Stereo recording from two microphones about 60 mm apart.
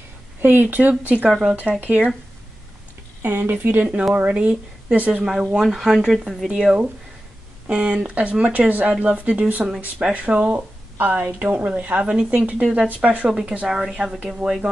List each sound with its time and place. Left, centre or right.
0.4 s speech: right
3.3 s speech: right
4.4 s speech: centre
5.2 s speech: centre
13.3 s speech: centre